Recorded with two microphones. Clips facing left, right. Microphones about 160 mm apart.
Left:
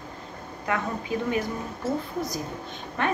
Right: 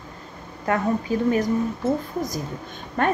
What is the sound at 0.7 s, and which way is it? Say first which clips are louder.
Speech: right 5 dB; 40° right (ahead or behind).